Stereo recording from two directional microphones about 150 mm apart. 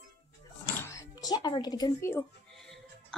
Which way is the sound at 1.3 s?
30° left (ahead or behind).